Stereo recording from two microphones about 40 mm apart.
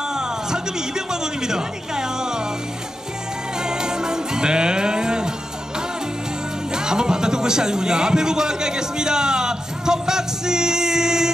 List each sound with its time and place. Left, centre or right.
0.1 s speech: centre
3.5 s music: centre
6.7 s a sound: centre